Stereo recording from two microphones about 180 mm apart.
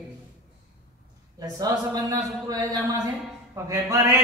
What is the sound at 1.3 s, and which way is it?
A man's voice, 20° right (ahead or behind).